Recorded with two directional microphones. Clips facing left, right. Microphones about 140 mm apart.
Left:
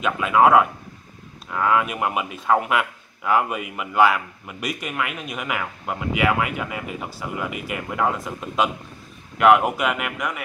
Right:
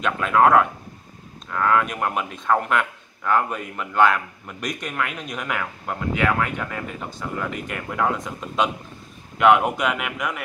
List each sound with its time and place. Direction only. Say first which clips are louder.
0.0 s speech: left 1 dB; 5° left (ahead or behind)